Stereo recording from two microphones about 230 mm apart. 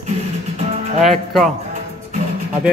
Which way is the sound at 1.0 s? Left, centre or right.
Centre.